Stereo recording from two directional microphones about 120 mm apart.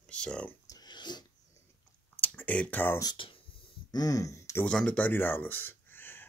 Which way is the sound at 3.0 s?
35° left (ahead or behind).